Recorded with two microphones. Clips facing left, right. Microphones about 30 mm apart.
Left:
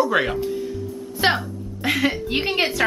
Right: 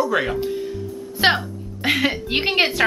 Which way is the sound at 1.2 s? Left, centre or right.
Centre.